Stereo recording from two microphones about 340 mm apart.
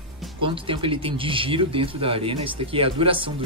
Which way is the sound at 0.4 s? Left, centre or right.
Centre.